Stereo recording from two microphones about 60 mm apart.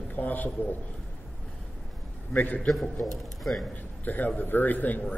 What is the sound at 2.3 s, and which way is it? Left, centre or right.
Speech, left.